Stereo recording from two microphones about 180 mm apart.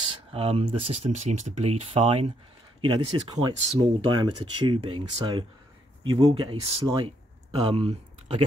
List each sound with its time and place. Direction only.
0.0 s speech: 30° right (ahead or behind)